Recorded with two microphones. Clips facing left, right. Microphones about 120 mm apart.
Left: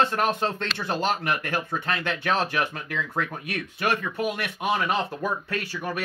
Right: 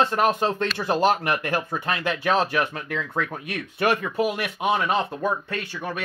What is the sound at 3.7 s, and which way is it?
Speech, 30° right (ahead or behind).